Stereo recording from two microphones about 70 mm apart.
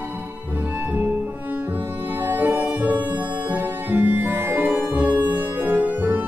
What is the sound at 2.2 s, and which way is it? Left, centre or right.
Music, right.